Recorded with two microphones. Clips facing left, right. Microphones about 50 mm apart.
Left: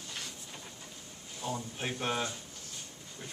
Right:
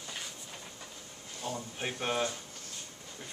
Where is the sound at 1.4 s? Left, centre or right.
Centre.